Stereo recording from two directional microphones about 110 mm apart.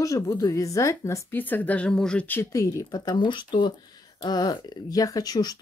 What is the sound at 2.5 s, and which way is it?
Speech, 30° left (ahead or behind).